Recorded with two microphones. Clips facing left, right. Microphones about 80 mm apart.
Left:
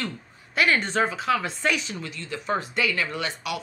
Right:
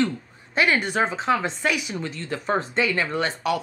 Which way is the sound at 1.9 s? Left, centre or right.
Right.